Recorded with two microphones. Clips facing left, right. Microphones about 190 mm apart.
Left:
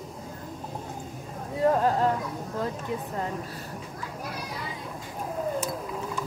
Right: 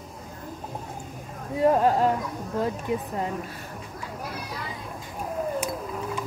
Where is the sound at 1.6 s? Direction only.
15° right (ahead or behind).